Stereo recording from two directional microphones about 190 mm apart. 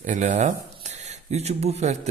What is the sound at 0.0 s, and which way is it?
Speech, 40° right (ahead or behind).